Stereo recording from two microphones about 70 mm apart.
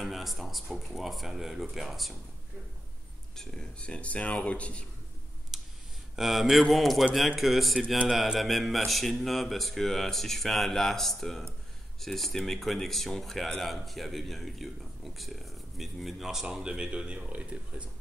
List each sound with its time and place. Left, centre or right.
0.0 s speech: centre
3.3 s speech: centre
5.5 s clicking: centre
6.1 s speech: centre